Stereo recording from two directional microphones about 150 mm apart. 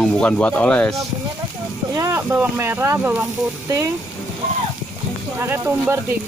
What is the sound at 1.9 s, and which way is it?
Speech, 15° right (ahead or behind).